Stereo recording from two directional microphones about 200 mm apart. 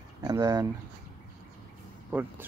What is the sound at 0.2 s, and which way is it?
Speech, 15° right (ahead or behind).